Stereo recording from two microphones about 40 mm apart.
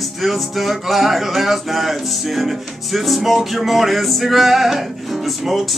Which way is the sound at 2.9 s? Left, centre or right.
Centre.